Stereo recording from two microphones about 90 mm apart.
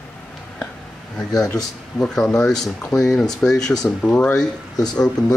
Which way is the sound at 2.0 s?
5° left (ahead or behind).